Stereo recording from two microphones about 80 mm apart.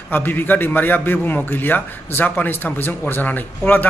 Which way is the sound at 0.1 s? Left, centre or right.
Left.